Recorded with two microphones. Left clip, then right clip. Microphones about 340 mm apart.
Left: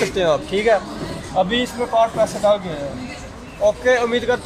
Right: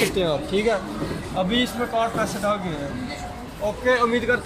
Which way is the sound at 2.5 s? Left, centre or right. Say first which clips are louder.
Left 6 dB; centre.